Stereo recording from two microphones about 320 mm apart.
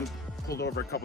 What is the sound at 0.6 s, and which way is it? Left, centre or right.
Speech, left.